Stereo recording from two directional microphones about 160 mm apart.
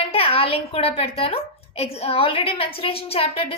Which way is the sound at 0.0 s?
35° left (ahead or behind).